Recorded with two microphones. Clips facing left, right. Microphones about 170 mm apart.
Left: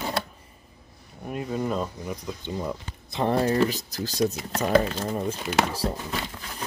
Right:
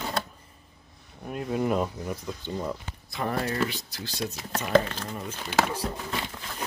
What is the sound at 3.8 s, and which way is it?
Speech, 40° left (ahead or behind).